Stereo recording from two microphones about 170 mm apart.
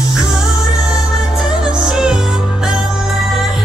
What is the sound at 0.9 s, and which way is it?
Music, 5° right (ahead or behind).